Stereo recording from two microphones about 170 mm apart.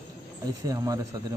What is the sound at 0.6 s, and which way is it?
Speech, 20° right (ahead or behind).